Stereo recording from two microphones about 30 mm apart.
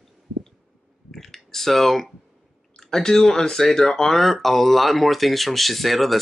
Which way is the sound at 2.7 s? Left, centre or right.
Centre.